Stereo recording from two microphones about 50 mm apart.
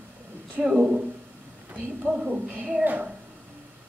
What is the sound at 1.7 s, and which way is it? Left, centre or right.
A woman's voice, right.